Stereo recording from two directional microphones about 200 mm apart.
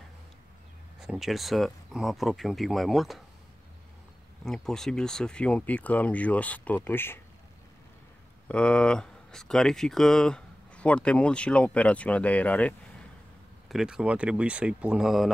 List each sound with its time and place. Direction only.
0.9 s speech: 5° right (ahead or behind)
4.5 s speech: centre (ahead or behind)
8.5 s speech: 5° left (ahead or behind)